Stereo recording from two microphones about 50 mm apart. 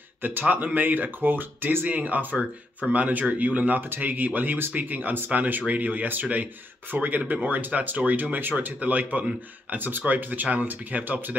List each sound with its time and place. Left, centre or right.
0.2 s speech: right